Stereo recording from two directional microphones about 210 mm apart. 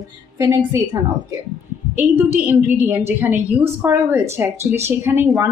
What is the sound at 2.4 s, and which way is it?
A woman's voice, 10° right (ahead or behind).